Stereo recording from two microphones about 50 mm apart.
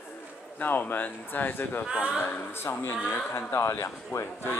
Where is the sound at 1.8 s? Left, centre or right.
Right.